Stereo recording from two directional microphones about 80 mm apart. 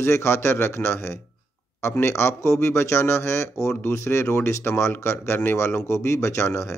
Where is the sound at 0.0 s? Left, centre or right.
Left.